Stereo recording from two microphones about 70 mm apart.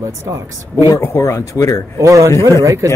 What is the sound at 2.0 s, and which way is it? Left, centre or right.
Speech, right.